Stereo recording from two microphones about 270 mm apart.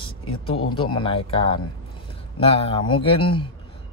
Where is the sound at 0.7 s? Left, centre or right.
Centre.